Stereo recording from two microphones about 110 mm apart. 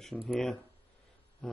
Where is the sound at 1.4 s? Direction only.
5° left (ahead or behind).